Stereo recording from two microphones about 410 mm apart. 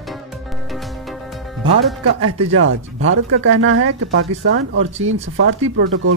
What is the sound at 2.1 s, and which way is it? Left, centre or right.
Speech, right.